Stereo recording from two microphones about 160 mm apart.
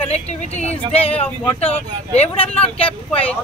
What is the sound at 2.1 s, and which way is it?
Speech, 40° left (ahead or behind).